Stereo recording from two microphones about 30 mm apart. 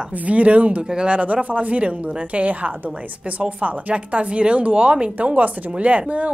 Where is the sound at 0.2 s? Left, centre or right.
Right.